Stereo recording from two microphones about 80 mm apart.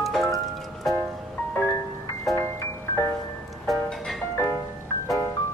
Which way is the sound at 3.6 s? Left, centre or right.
Centre.